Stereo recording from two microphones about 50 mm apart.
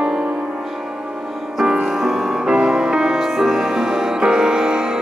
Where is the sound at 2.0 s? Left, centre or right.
Centre.